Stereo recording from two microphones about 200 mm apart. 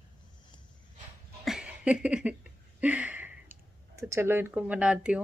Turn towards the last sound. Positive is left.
turn(degrees=-5)  # may be behind; listen again after turning